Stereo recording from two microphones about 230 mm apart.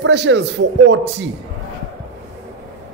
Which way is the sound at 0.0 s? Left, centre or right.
Right.